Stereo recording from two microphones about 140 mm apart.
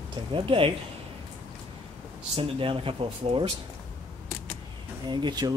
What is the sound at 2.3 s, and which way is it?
Speech, 40° right (ahead or behind).